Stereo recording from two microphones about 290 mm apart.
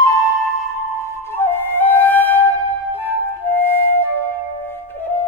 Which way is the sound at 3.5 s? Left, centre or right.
Centre.